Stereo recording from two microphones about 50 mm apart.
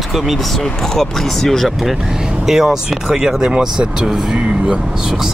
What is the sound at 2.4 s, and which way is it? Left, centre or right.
Speech, centre.